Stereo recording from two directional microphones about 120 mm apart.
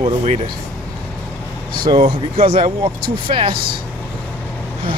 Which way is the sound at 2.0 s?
50° right (ahead or behind).